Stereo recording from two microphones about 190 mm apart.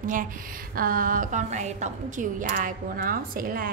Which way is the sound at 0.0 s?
45° right (ahead or behind).